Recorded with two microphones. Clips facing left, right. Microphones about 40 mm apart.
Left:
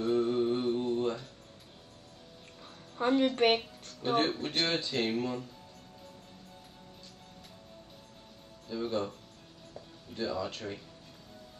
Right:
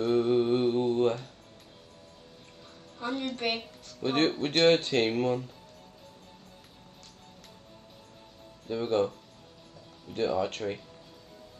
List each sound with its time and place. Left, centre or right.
0.0 s mantra: right
3.0 s a woman's voice: left
4.0 s speech: right
8.6 s speech: right
10.3 s speech: right